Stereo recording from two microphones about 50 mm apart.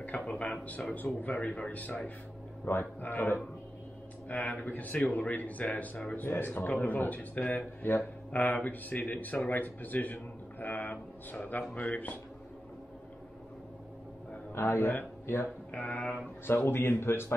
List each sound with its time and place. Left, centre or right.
0.3 s speech: left
4.3 s speech: left
6.2 s speech: left
14.5 s a man's voice: left
15.7 s speech: left
16.4 s a man's voice: left